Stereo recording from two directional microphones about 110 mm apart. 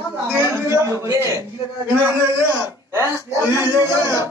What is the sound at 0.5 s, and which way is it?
Speech, 25° right (ahead or behind).